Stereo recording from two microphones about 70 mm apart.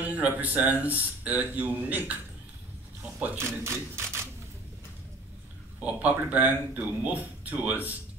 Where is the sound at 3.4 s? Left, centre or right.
Right.